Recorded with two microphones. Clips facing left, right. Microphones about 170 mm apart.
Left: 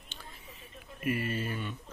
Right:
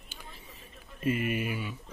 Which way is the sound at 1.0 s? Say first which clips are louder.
Right 3 dB; 20° right (ahead or behind).